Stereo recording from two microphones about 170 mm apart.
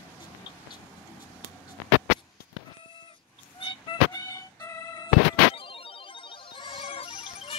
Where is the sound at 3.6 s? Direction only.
30° left (ahead or behind).